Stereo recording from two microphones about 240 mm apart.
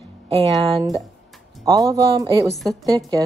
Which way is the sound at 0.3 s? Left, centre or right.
Right.